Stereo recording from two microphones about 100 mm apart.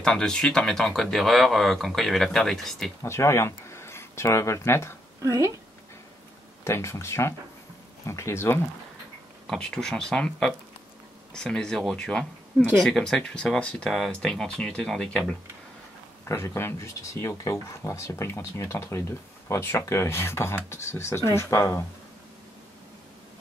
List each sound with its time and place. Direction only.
0.0 s speech: 5° left (ahead or behind)
3.0 s speech: 25° left (ahead or behind)
5.2 s speech: 30° right (ahead or behind)
6.6 s speech: 30° left (ahead or behind)
9.5 s speech: 5° left (ahead or behind)
16.3 s speech: 30° left (ahead or behind)